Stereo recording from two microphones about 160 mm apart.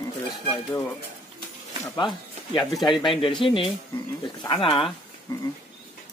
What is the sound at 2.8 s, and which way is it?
Speech, 30° left (ahead or behind).